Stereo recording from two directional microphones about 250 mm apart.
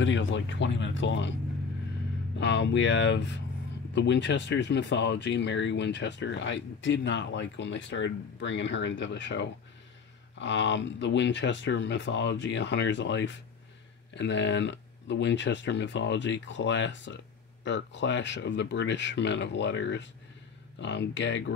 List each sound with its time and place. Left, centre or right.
0.0 s speech: left
2.3 s speech: left